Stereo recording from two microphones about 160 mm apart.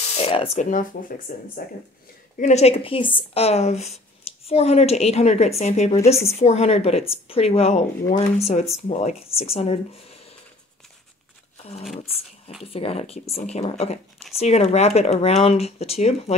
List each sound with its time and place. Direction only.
0.2 s a woman's voice: 35° left (ahead or behind)
0.6 s speech: 60° left (ahead or behind)
2.3 s a woman's voice: 45° left (ahead or behind)
12.7 s a woman's voice: 40° left (ahead or behind)